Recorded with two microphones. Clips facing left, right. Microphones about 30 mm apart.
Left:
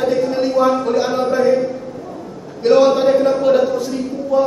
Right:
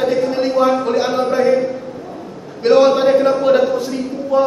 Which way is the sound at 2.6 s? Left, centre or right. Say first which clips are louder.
Right 1 dB; centre.